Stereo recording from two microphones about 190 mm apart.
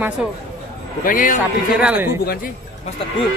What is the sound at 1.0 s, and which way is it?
Speech, 45° left (ahead or behind).